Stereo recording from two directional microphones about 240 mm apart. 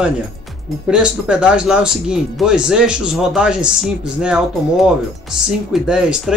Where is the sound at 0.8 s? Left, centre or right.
Centre.